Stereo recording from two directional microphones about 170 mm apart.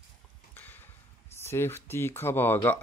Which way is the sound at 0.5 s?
10° left (ahead or behind).